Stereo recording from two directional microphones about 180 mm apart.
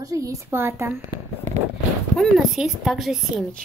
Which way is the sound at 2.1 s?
Centre (ahead or behind).